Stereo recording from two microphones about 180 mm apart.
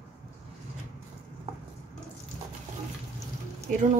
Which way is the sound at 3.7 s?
45° right (ahead or behind).